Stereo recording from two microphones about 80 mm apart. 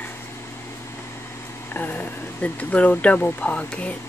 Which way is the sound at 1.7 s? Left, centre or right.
Left.